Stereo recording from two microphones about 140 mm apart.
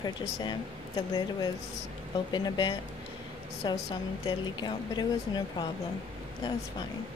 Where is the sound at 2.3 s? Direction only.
30° left (ahead or behind).